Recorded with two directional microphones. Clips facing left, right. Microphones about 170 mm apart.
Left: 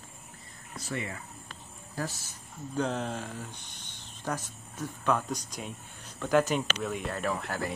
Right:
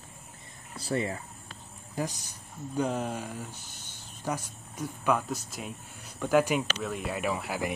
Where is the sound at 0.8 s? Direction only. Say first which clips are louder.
Right 6 dB; 35° right (ahead or behind).